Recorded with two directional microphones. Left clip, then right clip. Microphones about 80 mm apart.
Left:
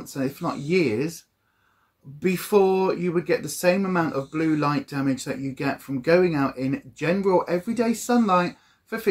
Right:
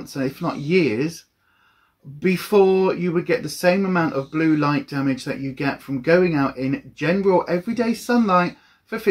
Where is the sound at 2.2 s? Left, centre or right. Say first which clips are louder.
Right 3 dB; left.